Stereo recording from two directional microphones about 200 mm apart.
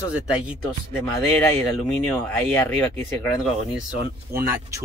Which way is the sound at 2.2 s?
10° left (ahead or behind).